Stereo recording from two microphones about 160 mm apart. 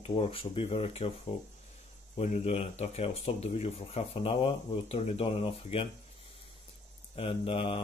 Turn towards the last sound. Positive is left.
turn(degrees=35)  # may be behind; listen again after turning